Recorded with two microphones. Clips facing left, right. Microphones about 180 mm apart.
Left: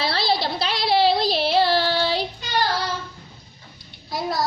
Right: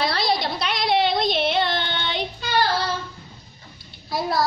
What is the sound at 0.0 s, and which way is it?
Child singing, 30° left (ahead or behind).